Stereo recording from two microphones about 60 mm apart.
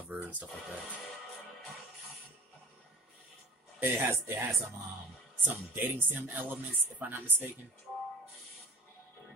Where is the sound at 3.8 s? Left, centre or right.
Right.